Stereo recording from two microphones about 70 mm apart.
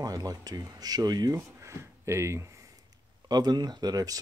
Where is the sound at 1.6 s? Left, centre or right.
Right.